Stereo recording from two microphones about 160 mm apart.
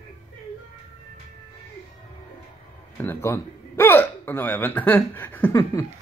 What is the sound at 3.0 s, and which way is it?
A man's voice, 15° left (ahead or behind).